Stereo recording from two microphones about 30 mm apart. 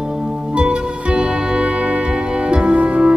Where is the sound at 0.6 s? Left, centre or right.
Right.